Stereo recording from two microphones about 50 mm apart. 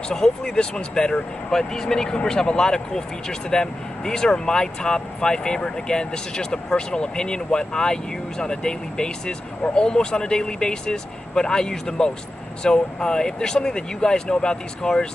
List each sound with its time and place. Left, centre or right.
0.1 s speech: centre